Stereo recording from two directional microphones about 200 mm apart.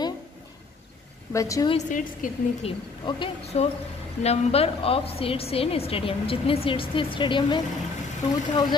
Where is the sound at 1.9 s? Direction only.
40° left (ahead or behind).